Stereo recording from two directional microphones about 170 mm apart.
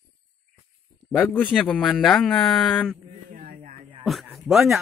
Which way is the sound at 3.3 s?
55° right (ahead or behind).